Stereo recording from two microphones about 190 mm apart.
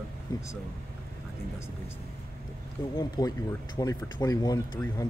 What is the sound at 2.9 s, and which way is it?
Speech, 20° left (ahead or behind).